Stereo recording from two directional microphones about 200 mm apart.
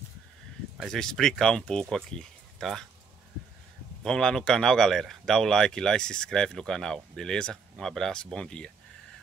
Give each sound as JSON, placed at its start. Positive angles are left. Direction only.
{"t": 0.7, "sound": "speech", "side_deg": 0}
{"t": 4.0, "sound": "speech", "side_deg": 5}